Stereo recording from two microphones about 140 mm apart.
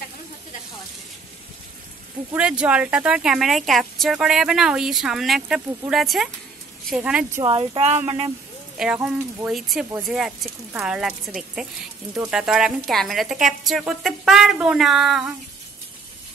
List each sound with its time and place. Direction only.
2.3 s speech: 5° right (ahead or behind)
7.4 s speech: 40° right (ahead or behind)
8.7 s speech: 5° right (ahead or behind)